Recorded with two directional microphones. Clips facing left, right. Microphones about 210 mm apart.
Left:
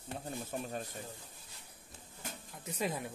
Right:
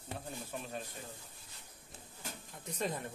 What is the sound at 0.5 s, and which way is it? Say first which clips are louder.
Speech: left 4 dB; 45° left (ahead or behind).